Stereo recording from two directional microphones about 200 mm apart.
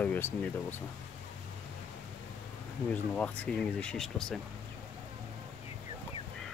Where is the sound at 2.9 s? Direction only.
5° left (ahead or behind).